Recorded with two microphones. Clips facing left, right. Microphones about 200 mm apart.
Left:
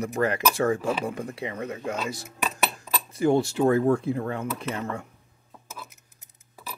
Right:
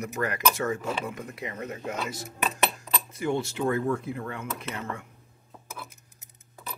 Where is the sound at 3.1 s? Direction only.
35° left (ahead or behind).